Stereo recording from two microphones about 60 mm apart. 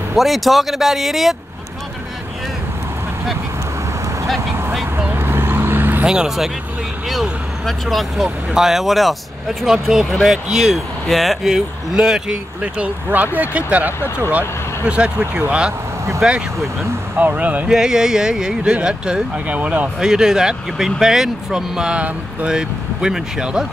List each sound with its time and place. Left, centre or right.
0.1 s speech: centre
5.1 s vehicle: right
6.0 s speech: centre
13.1 s speech: right
14.0 s speech: left
14.9 s speech: centre
17.2 s speech: right
17.6 s speech: centre
19.4 s speech: right
20.0 s speech: centre